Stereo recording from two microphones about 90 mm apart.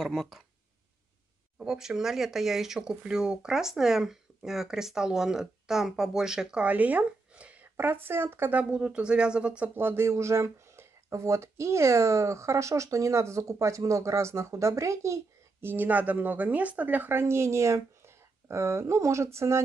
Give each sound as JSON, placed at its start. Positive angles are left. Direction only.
{"t": 0.0, "sound": "speech", "side_deg": 0}
{"t": 1.6, "sound": "speech", "side_deg": -5}
{"t": 9.8, "sound": "speech", "side_deg": -25}
{"t": 15.7, "sound": "a woman's voice", "side_deg": -20}